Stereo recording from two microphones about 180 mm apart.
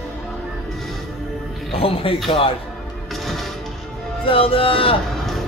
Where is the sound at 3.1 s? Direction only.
Centre (ahead or behind).